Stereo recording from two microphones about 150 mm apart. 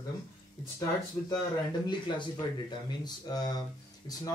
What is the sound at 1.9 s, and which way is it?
Speech, 30° left (ahead or behind).